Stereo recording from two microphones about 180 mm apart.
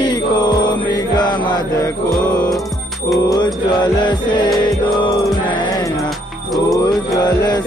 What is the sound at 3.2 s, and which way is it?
Music, 20° left (ahead or behind).